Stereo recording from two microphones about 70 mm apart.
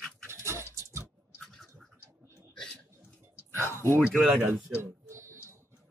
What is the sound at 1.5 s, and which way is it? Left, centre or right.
Bird, centre.